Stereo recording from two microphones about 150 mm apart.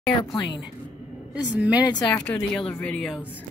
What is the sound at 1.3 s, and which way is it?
Speech, 10° right (ahead or behind).